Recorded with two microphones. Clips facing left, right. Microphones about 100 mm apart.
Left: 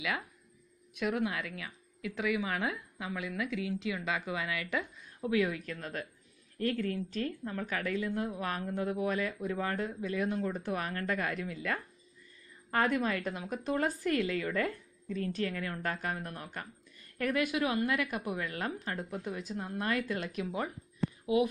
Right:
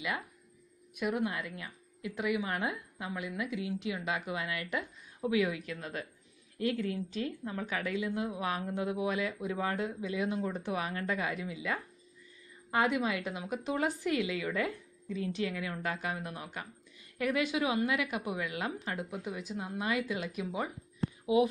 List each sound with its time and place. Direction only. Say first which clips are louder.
0.9 s speech: even; 15° right (ahead or behind)
1.2 s a woman's voice: even; 25° right (ahead or behind)
2.0 s a woman's voice: even; 15° right (ahead or behind)